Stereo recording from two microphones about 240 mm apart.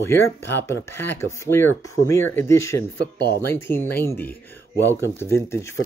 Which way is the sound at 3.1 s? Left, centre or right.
Left.